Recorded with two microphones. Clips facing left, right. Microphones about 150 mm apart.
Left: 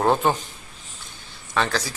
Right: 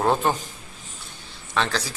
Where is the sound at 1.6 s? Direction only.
5° left (ahead or behind).